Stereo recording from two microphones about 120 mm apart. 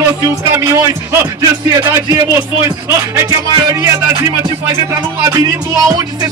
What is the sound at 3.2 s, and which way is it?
Speech, 35° right (ahead or behind).